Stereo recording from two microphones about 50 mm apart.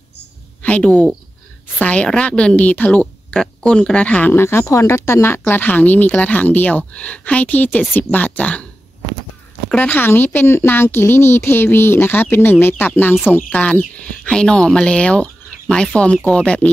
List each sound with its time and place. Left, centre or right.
0.6 s a sound: left
1.8 s speech: left
4.3 s speech: left
4.6 s speech: left
5.4 s speech: left
9.8 s speech: left